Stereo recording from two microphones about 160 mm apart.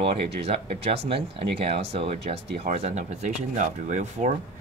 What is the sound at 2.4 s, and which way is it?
Speech, 90° right.